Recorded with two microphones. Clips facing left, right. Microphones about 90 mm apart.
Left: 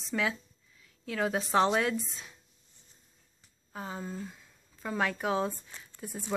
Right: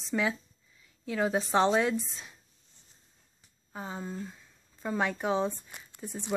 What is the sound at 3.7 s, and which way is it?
Speech, 5° right (ahead or behind).